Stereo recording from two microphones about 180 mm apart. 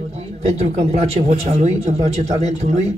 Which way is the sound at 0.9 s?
40° right (ahead or behind).